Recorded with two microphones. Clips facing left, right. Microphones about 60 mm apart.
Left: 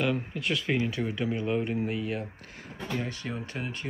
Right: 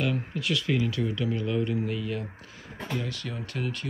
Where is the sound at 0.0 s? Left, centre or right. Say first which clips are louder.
Even; centre.